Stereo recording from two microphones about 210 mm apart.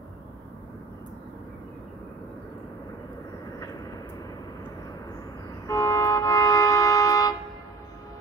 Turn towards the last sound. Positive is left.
turn(degrees=15)  # may be behind; listen again after turning